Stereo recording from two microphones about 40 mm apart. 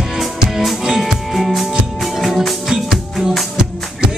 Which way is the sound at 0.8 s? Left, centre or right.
Centre.